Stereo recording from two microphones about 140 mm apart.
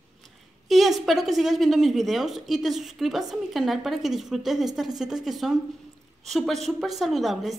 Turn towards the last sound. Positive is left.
turn(degrees=0)  # may be behind; listen again after turning